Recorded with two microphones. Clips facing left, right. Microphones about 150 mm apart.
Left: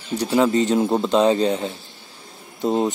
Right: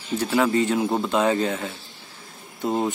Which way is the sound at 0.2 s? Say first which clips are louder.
Left 3 dB; 20° left (ahead or behind).